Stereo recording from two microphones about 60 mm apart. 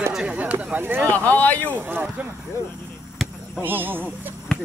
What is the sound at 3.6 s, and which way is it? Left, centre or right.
Speech, right.